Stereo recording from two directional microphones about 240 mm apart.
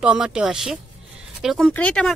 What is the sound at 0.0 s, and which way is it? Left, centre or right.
A woman's voice, centre.